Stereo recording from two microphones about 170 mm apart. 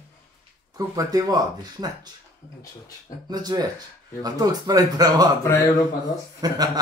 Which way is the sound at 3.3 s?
25° right (ahead or behind).